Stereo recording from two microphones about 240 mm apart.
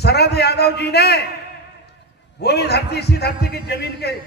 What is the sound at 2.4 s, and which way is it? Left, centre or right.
A man's voice, left.